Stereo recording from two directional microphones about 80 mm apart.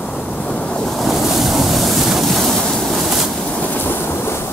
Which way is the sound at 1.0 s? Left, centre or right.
Centre.